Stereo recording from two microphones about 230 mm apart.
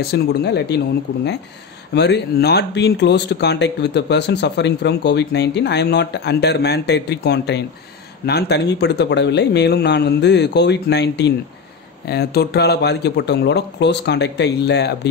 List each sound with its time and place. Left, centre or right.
0.0 s speech: left
2.0 s speech: left